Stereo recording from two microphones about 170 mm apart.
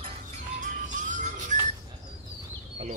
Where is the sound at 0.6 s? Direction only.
50° right (ahead or behind).